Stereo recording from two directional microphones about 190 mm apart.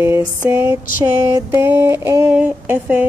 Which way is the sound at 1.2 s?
15° right (ahead or behind).